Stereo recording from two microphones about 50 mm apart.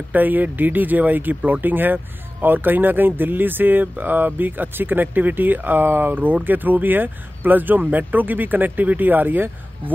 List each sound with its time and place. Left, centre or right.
0.1 s speech: right